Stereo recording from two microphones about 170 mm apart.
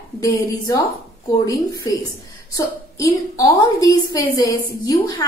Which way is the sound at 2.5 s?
20° left (ahead or behind).